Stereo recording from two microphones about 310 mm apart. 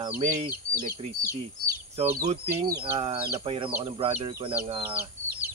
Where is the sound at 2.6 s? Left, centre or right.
Right.